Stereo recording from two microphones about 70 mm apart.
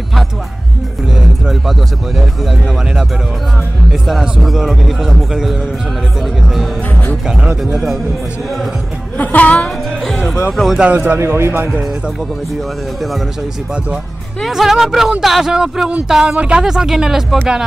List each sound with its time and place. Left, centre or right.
4.1 s speech: centre
7.7 s speech: centre
9.2 s speech: left
10.0 s speech: centre
10.8 s speech: right
11.1 s a man's voice: right
14.4 s speech: centre